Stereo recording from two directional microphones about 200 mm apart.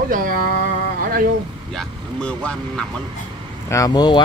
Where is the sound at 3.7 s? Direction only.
20° left (ahead or behind).